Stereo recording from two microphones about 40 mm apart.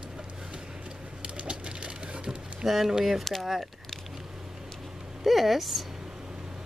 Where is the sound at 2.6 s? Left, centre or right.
Centre.